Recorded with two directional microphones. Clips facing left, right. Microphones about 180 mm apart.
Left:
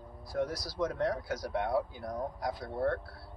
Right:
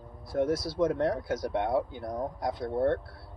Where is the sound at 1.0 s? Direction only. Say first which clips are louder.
Right 4 dB; 25° right (ahead or behind).